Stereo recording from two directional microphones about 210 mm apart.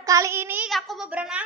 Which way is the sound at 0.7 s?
Centre (ahead or behind).